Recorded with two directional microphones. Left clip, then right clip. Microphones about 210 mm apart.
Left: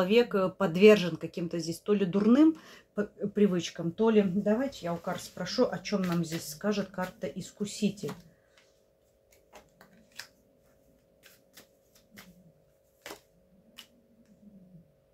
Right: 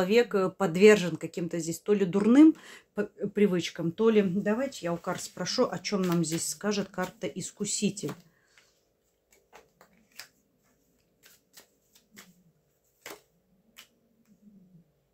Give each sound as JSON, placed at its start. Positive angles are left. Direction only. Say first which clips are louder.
{"t": 0.0, "sound": "speech", "louder": "right 1 dB", "side_deg": -20}
{"t": 3.9, "sound": "speech", "louder": "right 1 dB", "side_deg": -35}